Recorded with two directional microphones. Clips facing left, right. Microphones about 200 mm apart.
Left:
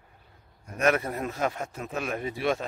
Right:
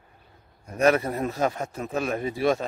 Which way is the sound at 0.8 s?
35° right (ahead or behind).